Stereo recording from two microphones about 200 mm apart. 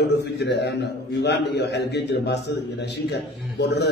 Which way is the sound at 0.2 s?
55° left (ahead or behind).